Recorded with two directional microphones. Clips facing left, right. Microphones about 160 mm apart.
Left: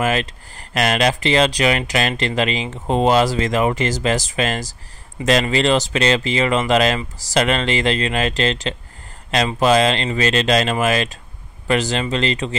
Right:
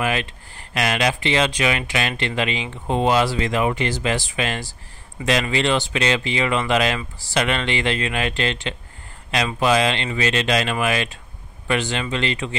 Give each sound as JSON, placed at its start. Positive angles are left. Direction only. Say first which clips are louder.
{"t": 0.0, "sound": "speech", "louder": "left 3 dB", "side_deg": 40}